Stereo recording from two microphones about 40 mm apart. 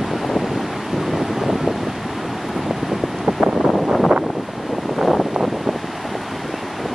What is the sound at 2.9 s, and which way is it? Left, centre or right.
Wind noise, centre.